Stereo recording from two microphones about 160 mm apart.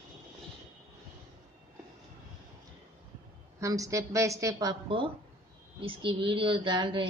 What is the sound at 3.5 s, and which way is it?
A woman's voice, 20° right (ahead or behind).